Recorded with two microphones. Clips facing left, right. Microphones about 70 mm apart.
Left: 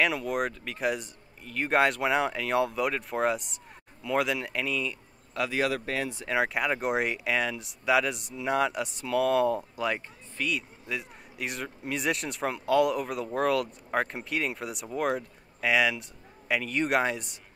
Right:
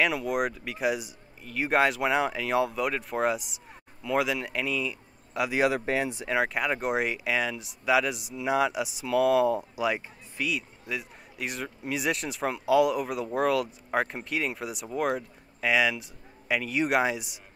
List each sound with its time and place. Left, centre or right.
0.0 s speech: centre
5.3 s speech: centre
6.2 s speech: centre